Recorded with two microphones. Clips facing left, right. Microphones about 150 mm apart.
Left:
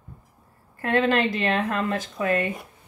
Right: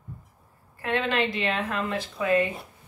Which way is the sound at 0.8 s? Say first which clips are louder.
Left 4 dB; 45° left (ahead or behind).